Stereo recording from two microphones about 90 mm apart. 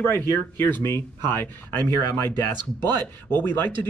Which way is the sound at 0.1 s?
25° left (ahead or behind).